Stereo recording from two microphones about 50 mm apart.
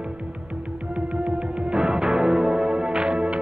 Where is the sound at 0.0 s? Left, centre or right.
Right.